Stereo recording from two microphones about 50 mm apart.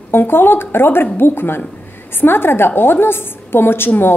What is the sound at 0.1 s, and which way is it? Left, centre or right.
A woman's voice, left.